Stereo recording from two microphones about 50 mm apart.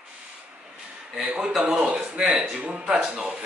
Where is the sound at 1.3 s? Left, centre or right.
Centre.